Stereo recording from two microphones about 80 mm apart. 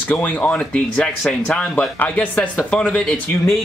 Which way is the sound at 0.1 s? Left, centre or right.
Centre.